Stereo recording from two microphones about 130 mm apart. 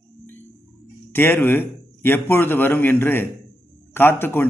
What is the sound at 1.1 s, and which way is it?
A man's voice, 15° left (ahead or behind).